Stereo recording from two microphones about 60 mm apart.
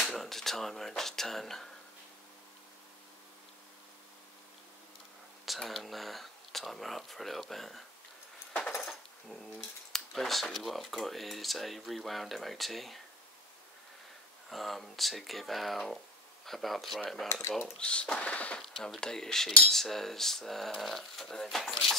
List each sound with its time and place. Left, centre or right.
0.0 s speech: centre
5.4 s speech: centre
9.9 s speech: centre
14.5 s speech: centre
17.3 s speech: left
17.7 s speech: centre
18.6 s speech: centre